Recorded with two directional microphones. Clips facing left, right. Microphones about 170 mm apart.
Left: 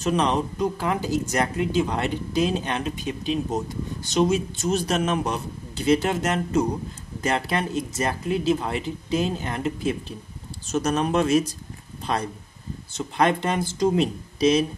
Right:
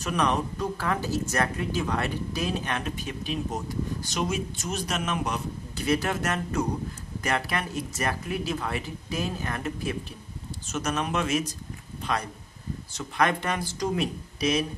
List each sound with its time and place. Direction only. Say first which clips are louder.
0.0 s speech: left 4 dB; 25° left (ahead or behind)
10.7 s speech: left 6 dB; 35° left (ahead or behind)